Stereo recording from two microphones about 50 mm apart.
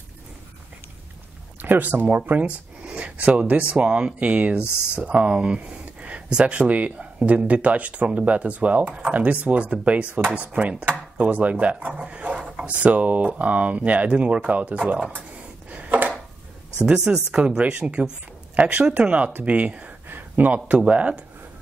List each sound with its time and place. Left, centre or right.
1.6 s speech: right
2.4 s speech: right
11.9 s dog: right
12.7 s speech: right
15.7 s a sound: right
16.8 s speech: centre